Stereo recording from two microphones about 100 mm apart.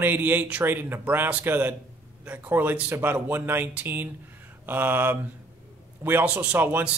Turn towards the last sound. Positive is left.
turn(degrees=-20)  # may be behind; listen again after turning